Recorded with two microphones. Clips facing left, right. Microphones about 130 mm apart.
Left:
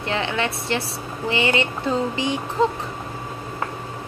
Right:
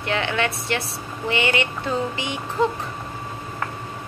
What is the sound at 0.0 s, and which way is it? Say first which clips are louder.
A woman's voice: even; 30° left (ahead or behind).